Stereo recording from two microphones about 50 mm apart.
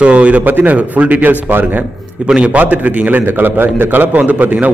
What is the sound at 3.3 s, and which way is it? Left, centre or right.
A man's voice, right.